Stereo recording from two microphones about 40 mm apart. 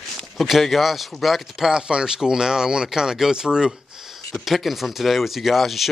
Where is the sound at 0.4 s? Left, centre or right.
Centre.